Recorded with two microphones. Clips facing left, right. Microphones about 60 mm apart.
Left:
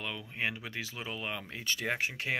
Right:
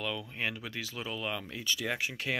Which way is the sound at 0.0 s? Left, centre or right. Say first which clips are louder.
Right 1 dB; left.